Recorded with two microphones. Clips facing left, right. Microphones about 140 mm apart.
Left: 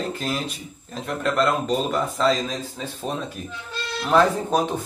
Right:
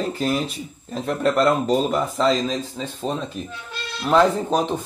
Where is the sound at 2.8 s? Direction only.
10° left (ahead or behind).